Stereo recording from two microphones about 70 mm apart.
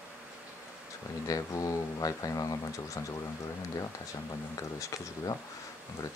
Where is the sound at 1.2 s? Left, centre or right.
Left.